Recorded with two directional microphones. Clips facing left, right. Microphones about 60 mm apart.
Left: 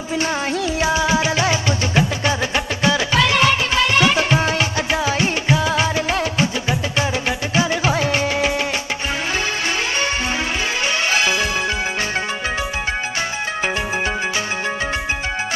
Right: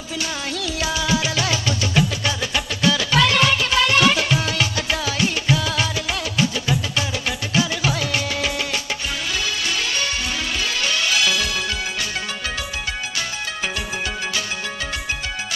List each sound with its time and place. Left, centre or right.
0.1 s music: left
10.9 s music: left